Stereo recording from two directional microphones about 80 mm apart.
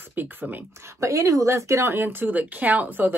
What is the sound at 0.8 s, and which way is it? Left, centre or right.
A woman's voice, right.